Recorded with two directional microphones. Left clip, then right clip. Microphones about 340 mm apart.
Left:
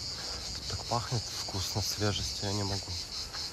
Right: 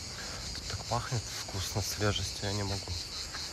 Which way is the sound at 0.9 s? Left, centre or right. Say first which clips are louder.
Left 1 dB; centre.